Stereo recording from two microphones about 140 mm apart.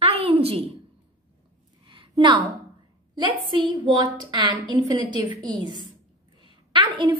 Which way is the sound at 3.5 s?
35° right (ahead or behind).